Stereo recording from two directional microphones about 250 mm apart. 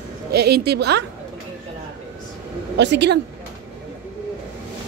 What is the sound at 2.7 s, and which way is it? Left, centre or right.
Speech, right.